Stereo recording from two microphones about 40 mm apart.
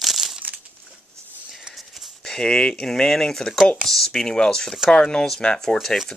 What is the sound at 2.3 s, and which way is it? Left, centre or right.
Speech, left.